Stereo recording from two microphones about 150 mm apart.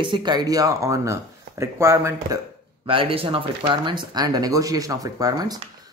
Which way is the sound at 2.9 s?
35° right (ahead or behind).